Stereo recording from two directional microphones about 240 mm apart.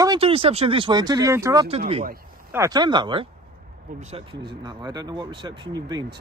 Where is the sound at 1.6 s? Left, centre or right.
Right.